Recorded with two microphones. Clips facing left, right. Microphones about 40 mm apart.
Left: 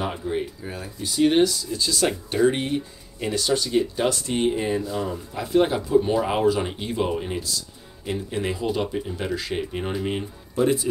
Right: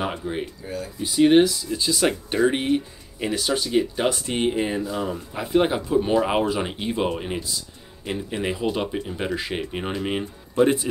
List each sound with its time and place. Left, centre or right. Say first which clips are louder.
0.0 s speech: even; centre
0.6 s speech: right 2 dB; centre
1.0 s speech: right 3 dB; centre; by 10.9 s right